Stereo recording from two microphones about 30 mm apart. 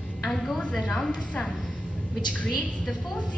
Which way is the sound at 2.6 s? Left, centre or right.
Left.